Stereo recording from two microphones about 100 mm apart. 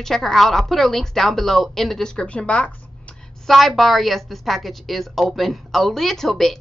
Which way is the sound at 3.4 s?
Centre (ahead or behind).